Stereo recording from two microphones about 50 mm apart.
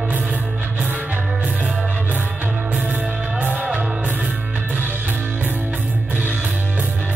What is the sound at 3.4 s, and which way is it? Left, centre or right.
Music, right.